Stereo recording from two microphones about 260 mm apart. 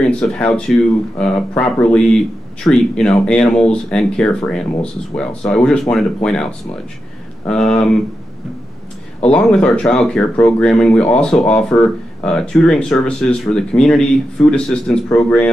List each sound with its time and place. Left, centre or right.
0.1 s speech: centre
9.3 s speech: centre